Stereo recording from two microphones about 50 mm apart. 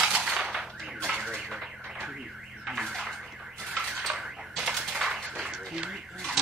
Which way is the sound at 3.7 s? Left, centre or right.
Centre.